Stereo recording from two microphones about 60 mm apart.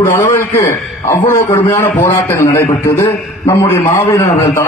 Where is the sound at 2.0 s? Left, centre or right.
Left.